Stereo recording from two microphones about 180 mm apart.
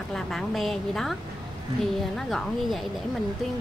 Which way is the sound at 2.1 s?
Centre (ahead or behind).